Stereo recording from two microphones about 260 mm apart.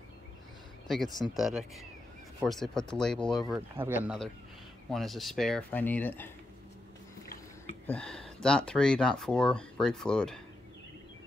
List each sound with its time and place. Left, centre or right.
0.8 s speech: centre
7.8 s speech: centre